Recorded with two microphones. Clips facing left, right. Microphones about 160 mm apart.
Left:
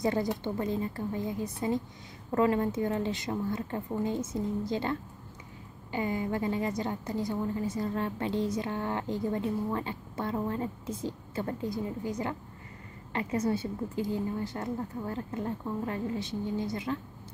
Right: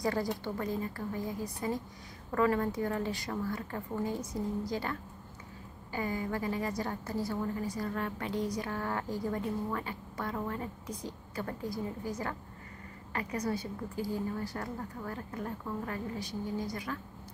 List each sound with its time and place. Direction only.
0.0 s a woman's voice: 25° left (ahead or behind)